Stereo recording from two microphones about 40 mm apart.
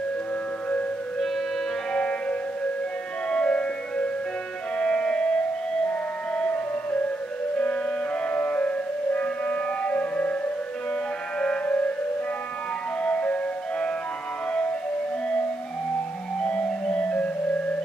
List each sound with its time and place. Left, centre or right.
2.0 s music: left
6.3 s music: left
11.3 s music: left
13.0 s music: left
16.9 s music: left